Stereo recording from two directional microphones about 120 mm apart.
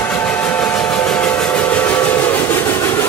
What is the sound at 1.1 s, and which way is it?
Train, 5° left (ahead or behind).